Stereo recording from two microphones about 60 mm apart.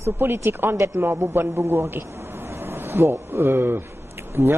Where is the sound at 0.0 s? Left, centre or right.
Right.